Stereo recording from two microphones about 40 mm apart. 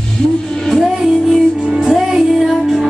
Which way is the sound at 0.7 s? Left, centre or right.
Centre.